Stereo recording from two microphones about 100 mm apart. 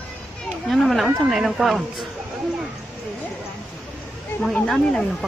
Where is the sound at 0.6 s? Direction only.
Centre (ahead or behind).